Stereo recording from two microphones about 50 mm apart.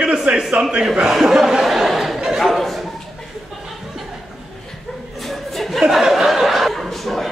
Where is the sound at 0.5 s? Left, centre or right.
Centre.